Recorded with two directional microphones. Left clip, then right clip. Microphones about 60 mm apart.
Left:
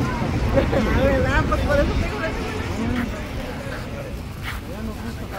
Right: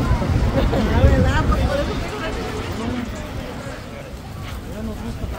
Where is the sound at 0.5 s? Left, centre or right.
Centre.